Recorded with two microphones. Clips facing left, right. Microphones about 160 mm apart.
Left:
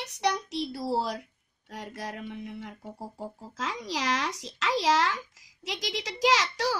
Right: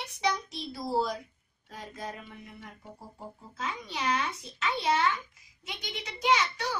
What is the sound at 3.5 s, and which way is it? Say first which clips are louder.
A child's voice: left 3 dB; 90° left.